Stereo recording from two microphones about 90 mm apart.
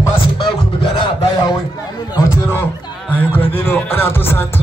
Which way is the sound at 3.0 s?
20° left (ahead or behind).